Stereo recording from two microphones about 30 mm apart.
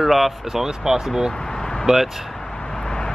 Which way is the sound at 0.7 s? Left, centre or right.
Right.